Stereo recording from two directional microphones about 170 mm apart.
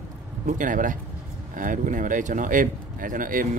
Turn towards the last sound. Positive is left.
turn(degrees=-50)  # may be behind; listen again after turning